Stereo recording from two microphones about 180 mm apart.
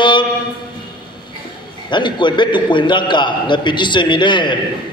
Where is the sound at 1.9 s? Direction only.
25° left (ahead or behind).